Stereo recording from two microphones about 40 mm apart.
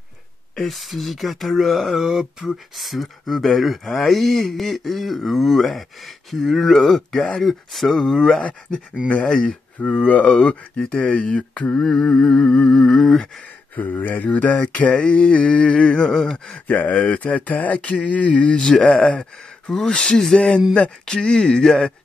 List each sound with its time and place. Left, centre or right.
0.6 s speech: centre
8.4 s speech: left
9.3 s speech: centre
9.8 s mantra: left
10.8 s speech: left
11.7 s speech: centre
13.7 s mantra: left
16.0 s speech: centre
16.5 s mantra: left
19.9 s speech: left
20.3 s speech: left
21.0 s speech: centre